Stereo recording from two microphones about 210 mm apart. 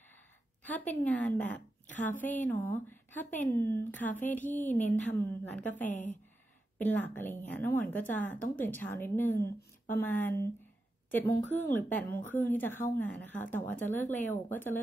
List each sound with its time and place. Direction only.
0.7 s a woman's voice: 10° left (ahead or behind)
6.8 s a woman's voice: 10° left (ahead or behind)
11.3 s speech: 35° left (ahead or behind)
11.7 s a woman's voice: 10° left (ahead or behind)